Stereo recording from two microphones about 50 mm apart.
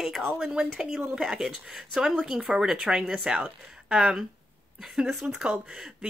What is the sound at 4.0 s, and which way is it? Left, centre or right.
Speech, centre.